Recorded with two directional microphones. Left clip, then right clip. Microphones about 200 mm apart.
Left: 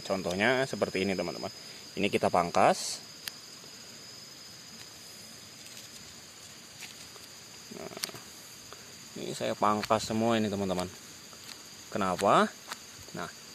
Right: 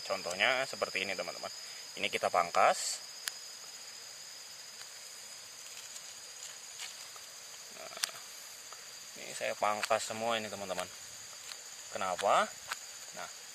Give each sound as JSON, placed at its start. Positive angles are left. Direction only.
{"t": 0.0, "sound": "speech", "side_deg": 10}
{"t": 9.2, "sound": "speech", "side_deg": 15}
{"t": 11.9, "sound": "cricket", "side_deg": 15}